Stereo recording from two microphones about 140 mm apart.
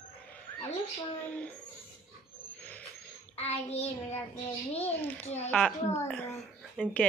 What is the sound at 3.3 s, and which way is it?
Child singing, 45° left (ahead or behind).